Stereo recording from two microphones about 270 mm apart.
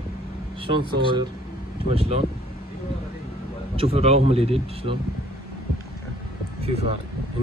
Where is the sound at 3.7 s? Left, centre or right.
Right.